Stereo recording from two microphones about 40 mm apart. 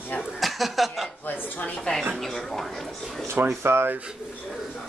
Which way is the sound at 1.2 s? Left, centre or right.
Left.